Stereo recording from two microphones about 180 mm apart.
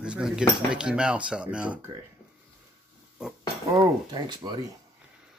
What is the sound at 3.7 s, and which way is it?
Speech, 25° right (ahead or behind).